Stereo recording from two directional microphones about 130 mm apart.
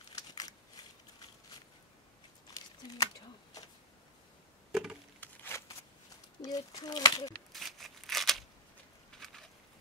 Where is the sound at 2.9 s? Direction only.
30° left (ahead or behind).